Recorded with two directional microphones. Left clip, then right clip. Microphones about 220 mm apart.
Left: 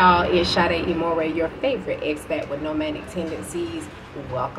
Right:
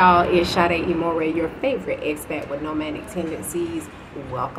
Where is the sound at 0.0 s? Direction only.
10° right (ahead or behind).